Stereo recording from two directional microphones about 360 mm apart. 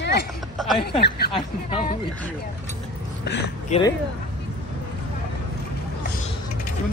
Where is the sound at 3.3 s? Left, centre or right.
Left.